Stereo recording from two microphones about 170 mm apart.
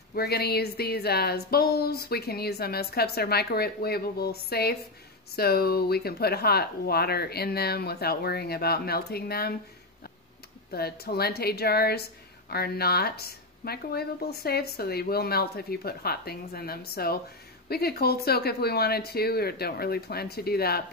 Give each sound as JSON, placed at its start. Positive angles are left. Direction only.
{"t": 0.1, "sound": "a woman's voice", "side_deg": 70}
{"t": 10.7, "sound": "a woman's voice", "side_deg": 65}